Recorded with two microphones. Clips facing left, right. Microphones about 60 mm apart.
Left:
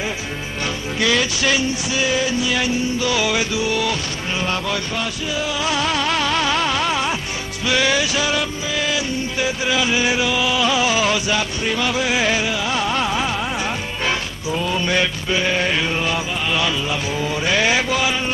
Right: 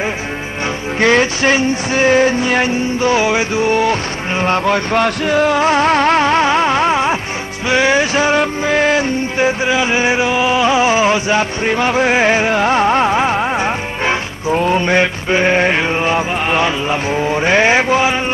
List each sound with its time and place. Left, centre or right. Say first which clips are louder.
0.9 s music: right 7 dB; right